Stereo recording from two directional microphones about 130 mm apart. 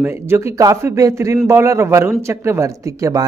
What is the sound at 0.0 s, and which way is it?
A man's voice, 20° right (ahead or behind).